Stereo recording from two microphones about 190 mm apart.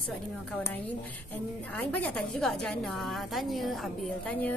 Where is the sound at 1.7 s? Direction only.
5° left (ahead or behind).